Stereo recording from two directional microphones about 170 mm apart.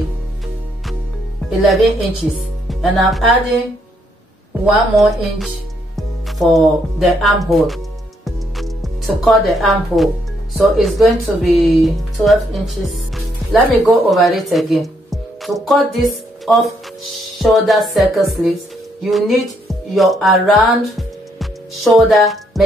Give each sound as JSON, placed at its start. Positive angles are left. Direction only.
{"t": 1.6, "sound": "music", "side_deg": 0}
{"t": 4.6, "sound": "music", "side_deg": 0}
{"t": 5.9, "sound": "speech", "side_deg": 0}
{"t": 8.3, "sound": "music", "side_deg": 0}
{"t": 11.8, "sound": "speech", "side_deg": 0}
{"t": 17.2, "sound": "music", "side_deg": 0}